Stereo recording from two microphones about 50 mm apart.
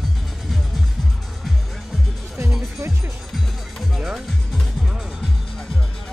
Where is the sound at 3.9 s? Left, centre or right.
Centre.